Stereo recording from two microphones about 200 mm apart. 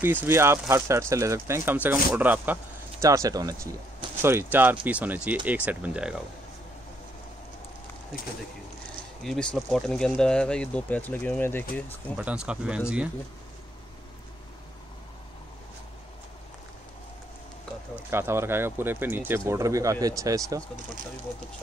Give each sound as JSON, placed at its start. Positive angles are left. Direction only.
{"t": 0.0, "sound": "speech", "side_deg": -10}
{"t": 9.2, "sound": "speech", "side_deg": 5}
{"t": 12.2, "sound": "speech", "side_deg": -5}
{"t": 18.1, "sound": "speech", "side_deg": -10}